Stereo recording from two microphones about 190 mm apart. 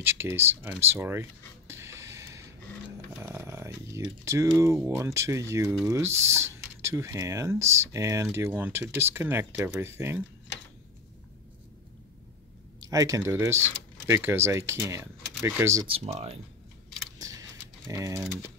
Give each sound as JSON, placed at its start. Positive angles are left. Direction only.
{"t": 0.0, "sound": "speech", "side_deg": -10}
{"t": 1.7, "sound": "a sound", "side_deg": -15}
{"t": 3.2, "sound": "speech", "side_deg": -15}
{"t": 12.8, "sound": "speech", "side_deg": -15}
{"t": 15.9, "sound": "speech", "side_deg": -35}
{"t": 17.2, "sound": "typing", "side_deg": -15}